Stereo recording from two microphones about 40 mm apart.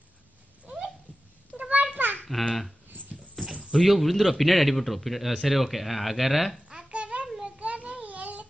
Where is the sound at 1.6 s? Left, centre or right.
Right.